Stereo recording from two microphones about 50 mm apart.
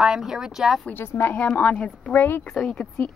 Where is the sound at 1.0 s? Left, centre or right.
Left.